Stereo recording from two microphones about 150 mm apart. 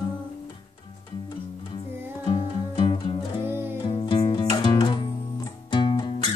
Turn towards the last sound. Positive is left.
turn(degrees=30)  # may be behind; listen again after turning